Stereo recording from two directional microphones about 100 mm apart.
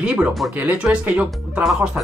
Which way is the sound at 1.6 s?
Centre (ahead or behind).